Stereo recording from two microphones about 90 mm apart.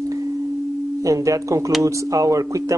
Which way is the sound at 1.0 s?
35° right (ahead or behind).